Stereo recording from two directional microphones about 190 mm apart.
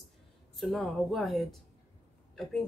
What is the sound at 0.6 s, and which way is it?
Speech, centre (ahead or behind).